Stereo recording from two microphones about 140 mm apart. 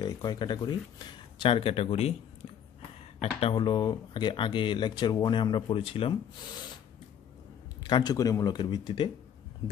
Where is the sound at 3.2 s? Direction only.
40° left (ahead or behind).